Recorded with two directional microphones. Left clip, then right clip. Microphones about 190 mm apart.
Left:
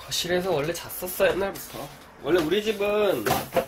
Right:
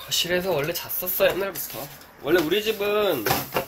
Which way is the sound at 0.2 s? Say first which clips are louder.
Right 1 dB; 15° left (ahead or behind).